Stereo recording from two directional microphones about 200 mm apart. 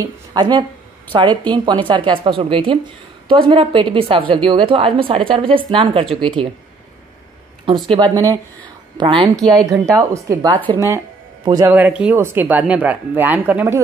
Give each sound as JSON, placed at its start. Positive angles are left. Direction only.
{"t": 0.0, "sound": "a woman's voice", "side_deg": -20}
{"t": 7.9, "sound": "a woman's voice", "side_deg": -25}
{"t": 9.4, "sound": "speech", "side_deg": 0}
{"t": 9.8, "sound": "a woman's voice", "side_deg": -15}
{"t": 11.7, "sound": "speech", "side_deg": -5}